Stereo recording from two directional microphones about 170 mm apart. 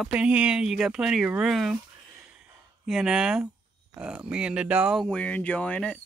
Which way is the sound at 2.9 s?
5° right (ahead or behind).